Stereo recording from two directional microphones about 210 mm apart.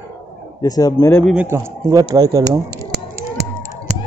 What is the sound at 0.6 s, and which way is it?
Speech, 15° left (ahead or behind).